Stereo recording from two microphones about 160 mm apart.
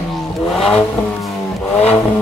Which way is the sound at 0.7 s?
Centre (ahead or behind).